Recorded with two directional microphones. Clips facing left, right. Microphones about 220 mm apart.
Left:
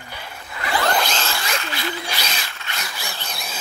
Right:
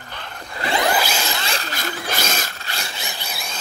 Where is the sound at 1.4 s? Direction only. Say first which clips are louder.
Even; 35° right (ahead or behind).